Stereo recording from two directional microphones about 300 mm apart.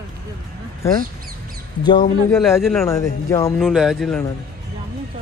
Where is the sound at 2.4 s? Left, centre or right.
Centre.